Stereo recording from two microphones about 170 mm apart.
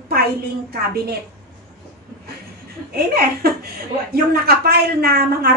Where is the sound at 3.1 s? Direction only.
65° right (ahead or behind).